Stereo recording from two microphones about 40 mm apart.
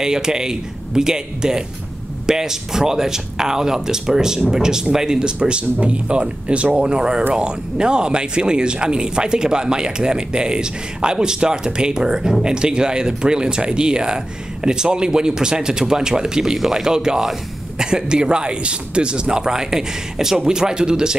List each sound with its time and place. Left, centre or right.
0.0 s speech: centre